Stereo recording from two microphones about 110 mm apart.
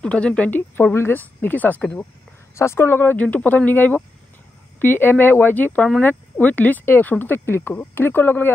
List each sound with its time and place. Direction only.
0.0 s speech: 10° left (ahead or behind)